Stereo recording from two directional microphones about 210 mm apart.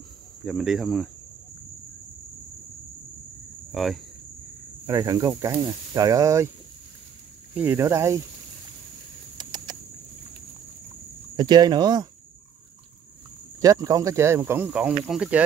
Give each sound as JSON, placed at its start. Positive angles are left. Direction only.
{"t": 0.5, "sound": "speech", "side_deg": 0}
{"t": 3.7, "sound": "speech", "side_deg": 0}
{"t": 4.8, "sound": "speech", "side_deg": -15}
{"t": 7.5, "sound": "speech", "side_deg": -10}
{"t": 9.4, "sound": "a sound", "side_deg": -20}
{"t": 11.3, "sound": "speech", "side_deg": -20}
{"t": 13.6, "sound": "speech", "side_deg": -15}